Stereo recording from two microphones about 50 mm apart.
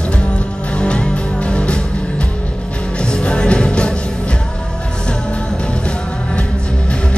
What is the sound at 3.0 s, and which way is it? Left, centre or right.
Music, centre.